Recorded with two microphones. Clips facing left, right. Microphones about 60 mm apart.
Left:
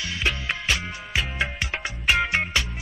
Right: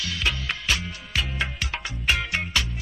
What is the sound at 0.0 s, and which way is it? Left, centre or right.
Music, left.